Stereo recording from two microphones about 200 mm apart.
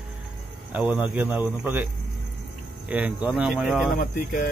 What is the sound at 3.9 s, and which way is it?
Speech, 45° left (ahead or behind).